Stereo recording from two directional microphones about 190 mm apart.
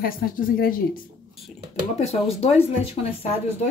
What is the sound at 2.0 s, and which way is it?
Speech, 35° left (ahead or behind).